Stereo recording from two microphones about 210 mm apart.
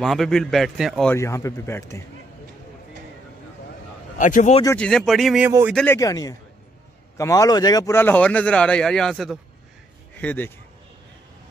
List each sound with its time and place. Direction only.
0.0 s a man's voice: centre (ahead or behind)
1.1 s speech: 15° left (ahead or behind)
4.2 s speech: 35° left (ahead or behind)
4.6 s a man's voice: 5° left (ahead or behind)
5.9 s speech: 15° left (ahead or behind)